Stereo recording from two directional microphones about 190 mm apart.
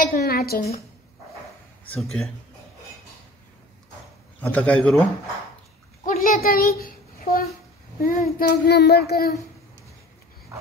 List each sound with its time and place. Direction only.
0.0 s a woman's voice: 50° left (ahead or behind)
1.9 s a man's voice: 5° left (ahead or behind)
4.4 s a man's voice: 10° left (ahead or behind)
6.0 s a sound: 45° left (ahead or behind)
8.0 s child singing: 50° left (ahead or behind)